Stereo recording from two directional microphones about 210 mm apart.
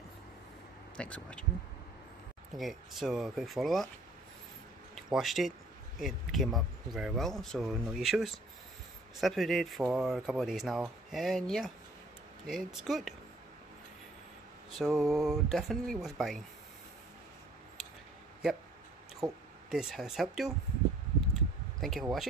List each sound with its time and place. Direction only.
0.9 s speech: 5° left (ahead or behind)
2.5 s speech: centre (ahead or behind)
4.9 s speech: centre (ahead or behind)
14.8 s speech: centre (ahead or behind)
19.2 s speech: 15° right (ahead or behind)
19.7 s speech: centre (ahead or behind)
21.3 s a sound: centre (ahead or behind)